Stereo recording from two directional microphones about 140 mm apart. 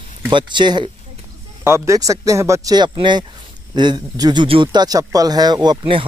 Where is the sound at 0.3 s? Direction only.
35° right (ahead or behind).